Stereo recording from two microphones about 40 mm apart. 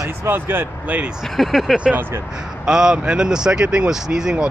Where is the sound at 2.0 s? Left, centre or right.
Right.